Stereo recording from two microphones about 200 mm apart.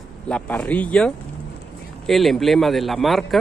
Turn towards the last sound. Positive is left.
turn(degrees=0)  # may be behind; listen again after turning